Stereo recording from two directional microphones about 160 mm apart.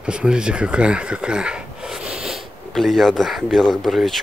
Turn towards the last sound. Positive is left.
turn(degrees=0)  # may be behind; listen again after turning